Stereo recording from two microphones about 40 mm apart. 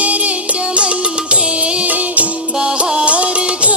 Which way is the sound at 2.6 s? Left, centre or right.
Centre.